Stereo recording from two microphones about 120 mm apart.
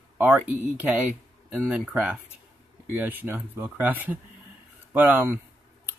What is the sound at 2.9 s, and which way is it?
Speech, 15° right (ahead or behind).